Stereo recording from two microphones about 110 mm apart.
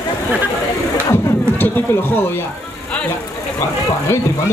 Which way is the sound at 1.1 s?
20° left (ahead or behind).